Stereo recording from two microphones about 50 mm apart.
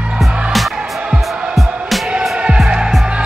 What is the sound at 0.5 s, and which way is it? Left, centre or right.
Music, centre.